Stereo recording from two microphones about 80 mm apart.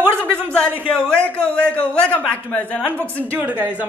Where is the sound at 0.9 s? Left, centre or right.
Centre.